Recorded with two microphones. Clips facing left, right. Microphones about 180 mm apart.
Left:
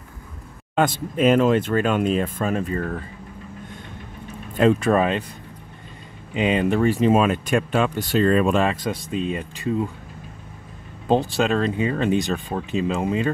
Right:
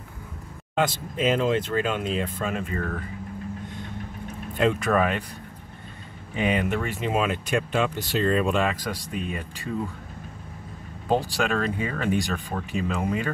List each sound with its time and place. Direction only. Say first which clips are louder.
0.7 s speech: left 4 dB; 55° left (ahead or behind)
4.6 s speech: left 5 dB; 35° left (ahead or behind)
6.3 s speech: left 5 dB; 25° left (ahead or behind); by 8.6 s 50° left (ahead or behind)
8.6 s speech: left 4 dB; 25° left (ahead or behind)
11.1 s speech: left 4 dB; 25° left (ahead or behind)